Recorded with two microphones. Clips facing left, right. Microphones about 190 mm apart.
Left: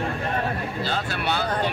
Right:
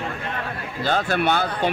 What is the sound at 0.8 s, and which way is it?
Speech, 50° right (ahead or behind).